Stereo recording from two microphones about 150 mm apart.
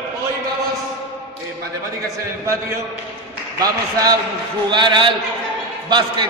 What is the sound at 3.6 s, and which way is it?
A man's voice, 25° right (ahead or behind).